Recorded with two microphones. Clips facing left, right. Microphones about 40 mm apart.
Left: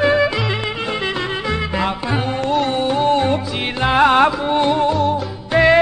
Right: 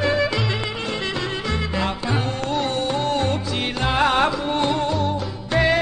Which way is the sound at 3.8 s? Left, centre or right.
Centre.